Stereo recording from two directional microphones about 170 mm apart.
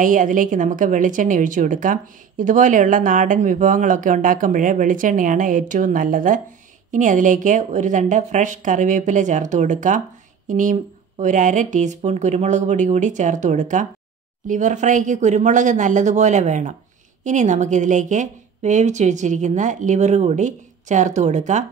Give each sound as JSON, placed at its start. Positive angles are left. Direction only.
{"t": 0.0, "sound": "a woman's voice", "side_deg": -50}